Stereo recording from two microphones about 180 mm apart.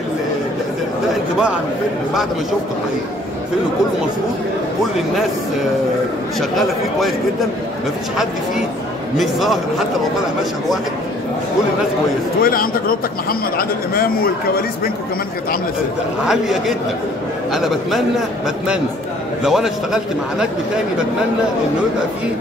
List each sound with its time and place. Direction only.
9.1 s a man's voice: centre (ahead or behind)
12.4 s speech: 55° left (ahead or behind)
16.3 s a man's voice: centre (ahead or behind)
19.4 s a man's voice: 5° right (ahead or behind)